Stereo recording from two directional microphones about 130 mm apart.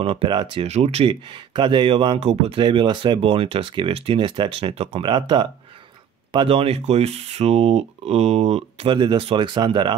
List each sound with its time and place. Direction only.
0.0 s speech: 45° right (ahead or behind)
0.7 s speech: 55° right (ahead or behind)
1.3 s speech: 35° right (ahead or behind)
2.6 s speech: 35° right (ahead or behind)